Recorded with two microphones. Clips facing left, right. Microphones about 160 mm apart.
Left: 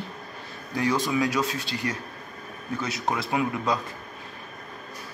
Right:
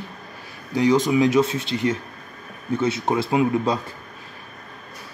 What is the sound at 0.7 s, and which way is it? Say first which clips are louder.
Speech: right 7 dB; 20° right (ahead or behind).